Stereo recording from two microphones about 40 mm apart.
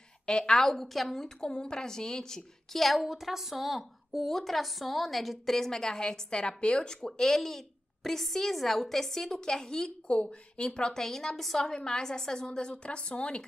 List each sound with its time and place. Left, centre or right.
0.3 s a woman's voice: centre
0.7 s a woman's voice: centre
2.8 s a woman's voice: centre
11.7 s a woman's voice: centre